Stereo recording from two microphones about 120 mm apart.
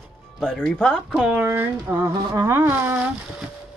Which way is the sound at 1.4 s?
15° right (ahead or behind).